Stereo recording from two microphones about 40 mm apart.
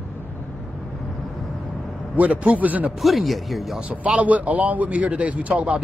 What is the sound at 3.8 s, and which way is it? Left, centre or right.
A man's voice, right.